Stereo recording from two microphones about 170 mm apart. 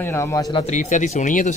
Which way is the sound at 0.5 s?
45° left (ahead or behind).